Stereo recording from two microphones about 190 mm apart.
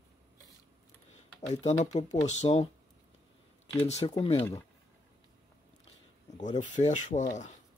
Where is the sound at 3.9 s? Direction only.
25° left (ahead or behind).